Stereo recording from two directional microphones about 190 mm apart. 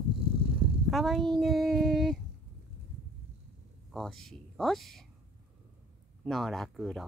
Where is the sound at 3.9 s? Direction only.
Centre (ahead or behind).